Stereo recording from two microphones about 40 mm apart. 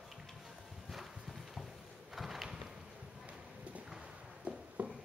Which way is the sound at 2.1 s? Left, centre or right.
Centre.